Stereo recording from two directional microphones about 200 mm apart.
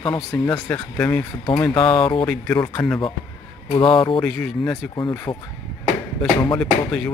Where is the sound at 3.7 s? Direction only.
25° left (ahead or behind).